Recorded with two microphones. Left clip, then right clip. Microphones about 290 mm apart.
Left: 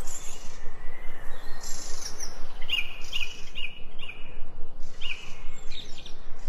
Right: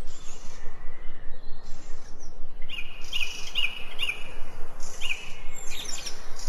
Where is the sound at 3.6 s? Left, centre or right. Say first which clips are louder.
Right 9 dB; right.